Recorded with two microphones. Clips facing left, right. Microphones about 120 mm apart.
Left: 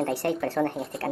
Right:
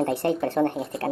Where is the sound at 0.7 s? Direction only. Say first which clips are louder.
Right 2 dB; centre (ahead or behind).